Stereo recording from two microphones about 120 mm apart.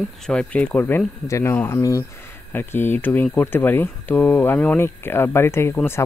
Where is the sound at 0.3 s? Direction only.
10° left (ahead or behind); by 2.0 s 30° left (ahead or behind).